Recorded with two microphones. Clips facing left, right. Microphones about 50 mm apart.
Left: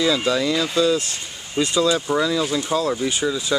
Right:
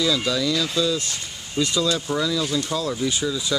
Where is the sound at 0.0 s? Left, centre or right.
Left.